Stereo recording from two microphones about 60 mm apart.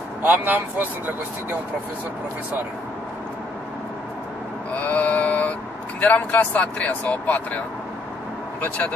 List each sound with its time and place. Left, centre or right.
0.2 s speech: right
4.7 s sheep: left
5.9 s speech: left